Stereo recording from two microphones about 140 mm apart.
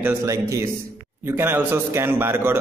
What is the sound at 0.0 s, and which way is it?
A man's voice, 20° right (ahead or behind).